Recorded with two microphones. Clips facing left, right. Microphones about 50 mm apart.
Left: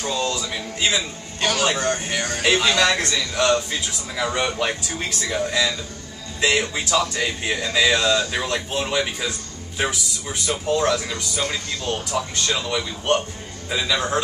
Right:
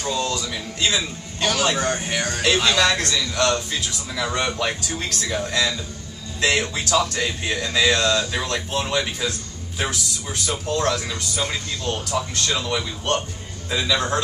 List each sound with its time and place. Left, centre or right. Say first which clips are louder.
0.0 s music: even; centre
0.8 s speech: even; centre
1.8 s speech: even; centre
2.4 s speech: left 1 dB; centre